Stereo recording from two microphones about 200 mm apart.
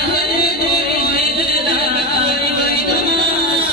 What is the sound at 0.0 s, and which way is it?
Music, 55° left (ahead or behind).